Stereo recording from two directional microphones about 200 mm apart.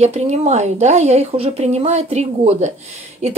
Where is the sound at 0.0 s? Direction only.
35° right (ahead or behind).